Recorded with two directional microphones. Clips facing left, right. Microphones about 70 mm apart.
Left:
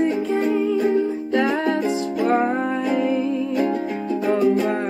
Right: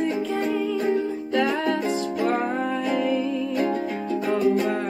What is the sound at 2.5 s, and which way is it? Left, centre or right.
Music, left.